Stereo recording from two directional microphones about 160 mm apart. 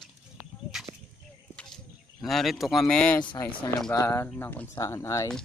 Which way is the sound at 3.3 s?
30° left (ahead or behind).